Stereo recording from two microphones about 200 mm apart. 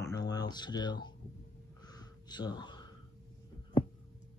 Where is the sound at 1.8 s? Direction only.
20° left (ahead or behind).